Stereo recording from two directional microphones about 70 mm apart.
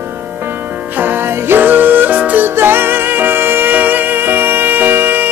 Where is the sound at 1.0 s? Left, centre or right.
Right.